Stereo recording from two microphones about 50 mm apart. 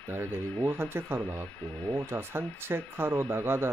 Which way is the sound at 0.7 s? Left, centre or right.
Right.